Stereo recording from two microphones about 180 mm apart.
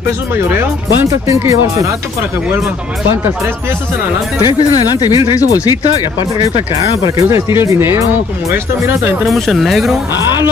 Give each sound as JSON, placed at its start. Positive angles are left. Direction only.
{"t": 1.2, "sound": "speech", "side_deg": -15}
{"t": 4.4, "sound": "speech", "side_deg": 20}
{"t": 7.2, "sound": "speech", "side_deg": -15}
{"t": 9.2, "sound": "speech", "side_deg": 0}